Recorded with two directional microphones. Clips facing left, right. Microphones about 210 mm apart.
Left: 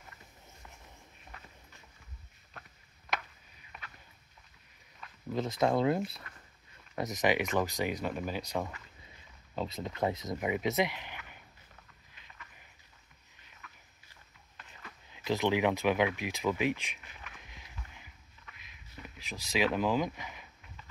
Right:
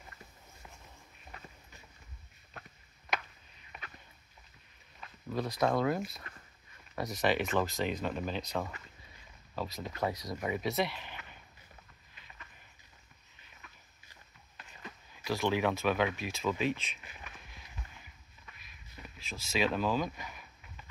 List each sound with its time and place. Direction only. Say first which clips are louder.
5.3 s speech: left 1 dB; 25° left (ahead or behind)
9.6 s speech: left 2 dB; 25° left (ahead or behind)
15.1 s speech: left 2 dB; 20° left (ahead or behind)
19.0 s speech: left 1 dB; 15° left (ahead or behind)